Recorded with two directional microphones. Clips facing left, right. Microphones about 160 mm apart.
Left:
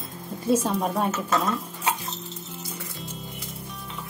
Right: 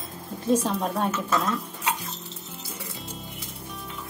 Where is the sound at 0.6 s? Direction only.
5° left (ahead or behind).